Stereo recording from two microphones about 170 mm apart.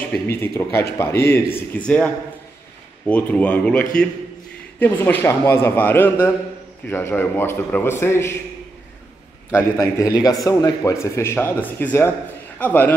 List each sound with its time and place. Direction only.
0.1 s speech: 15° left (ahead or behind)
9.5 s a man's voice: 20° left (ahead or behind)